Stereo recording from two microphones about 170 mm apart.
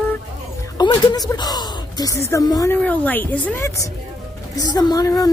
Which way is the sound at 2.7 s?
10° left (ahead or behind).